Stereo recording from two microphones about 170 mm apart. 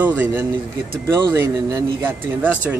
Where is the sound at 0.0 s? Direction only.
10° right (ahead or behind).